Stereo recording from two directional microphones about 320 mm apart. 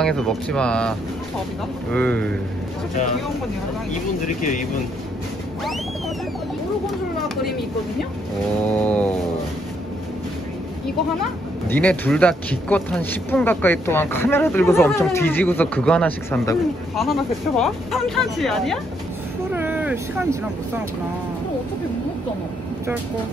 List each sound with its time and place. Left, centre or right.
0.0 s speech: centre
4.4 s speech: left
8.8 s speech: centre
11.6 s speech: centre
19.5 s vehicle: centre